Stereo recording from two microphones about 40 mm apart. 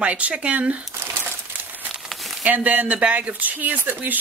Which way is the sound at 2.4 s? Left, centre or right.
Right.